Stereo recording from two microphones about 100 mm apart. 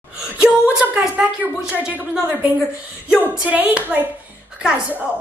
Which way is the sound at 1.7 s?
15° right (ahead or behind).